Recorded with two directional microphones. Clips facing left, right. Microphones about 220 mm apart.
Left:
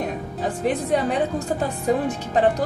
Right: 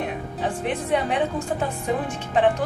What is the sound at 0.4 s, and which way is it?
Speech, 40° left (ahead or behind).